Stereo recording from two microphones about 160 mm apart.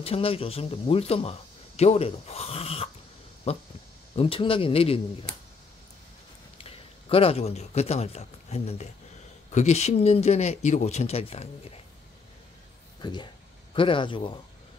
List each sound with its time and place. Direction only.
0.0 s speech: 35° left (ahead or behind)
6.6 s a man's voice: 35° left (ahead or behind)
13.0 s speech: 25° left (ahead or behind)